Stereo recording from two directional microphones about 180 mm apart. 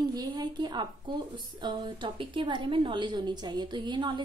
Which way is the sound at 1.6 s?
25° right (ahead or behind).